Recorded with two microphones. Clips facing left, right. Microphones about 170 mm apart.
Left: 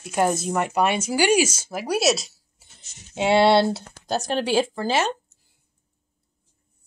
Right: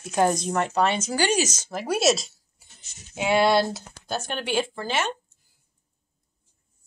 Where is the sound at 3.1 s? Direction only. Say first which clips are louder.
Left 3 dB; 30° left (ahead or behind).